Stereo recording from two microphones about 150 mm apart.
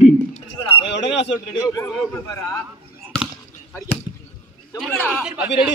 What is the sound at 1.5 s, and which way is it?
Speech, 20° left (ahead or behind).